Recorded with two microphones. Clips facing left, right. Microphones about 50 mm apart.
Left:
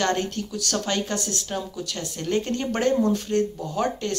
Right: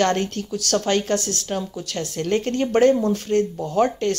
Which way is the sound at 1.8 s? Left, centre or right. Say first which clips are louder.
Right 4 dB; right.